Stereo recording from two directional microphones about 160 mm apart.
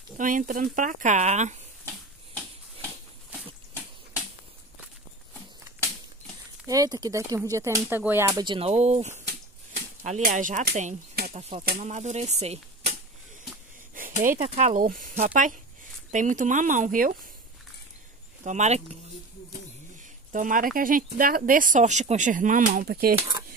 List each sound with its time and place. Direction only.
0.2 s speech: 55° right (ahead or behind)
6.7 s speech: 20° right (ahead or behind)
8.3 s speech: 25° right (ahead or behind)
8.5 s speech: 40° right (ahead or behind)
9.8 s a sound: 45° right (ahead or behind)
10.2 s speech: 55° right (ahead or behind)
13.9 s a sound: 60° right (ahead or behind)
14.4 s speech: 45° right (ahead or behind)
14.8 s speech: 60° right (ahead or behind)
18.4 s speech: 45° right (ahead or behind)
20.3 s speech: 55° right (ahead or behind)
22.8 s speech: 70° right (ahead or behind)